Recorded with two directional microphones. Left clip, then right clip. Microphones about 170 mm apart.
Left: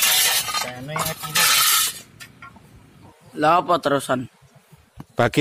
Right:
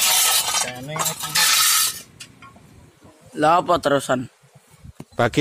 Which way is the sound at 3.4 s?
15° right (ahead or behind).